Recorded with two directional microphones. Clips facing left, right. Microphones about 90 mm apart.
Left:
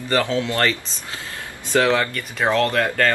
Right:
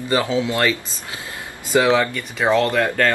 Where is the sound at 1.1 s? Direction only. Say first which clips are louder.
Even; 20° right (ahead or behind).